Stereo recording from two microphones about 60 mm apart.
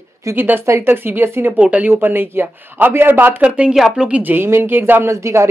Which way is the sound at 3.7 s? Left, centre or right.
Centre.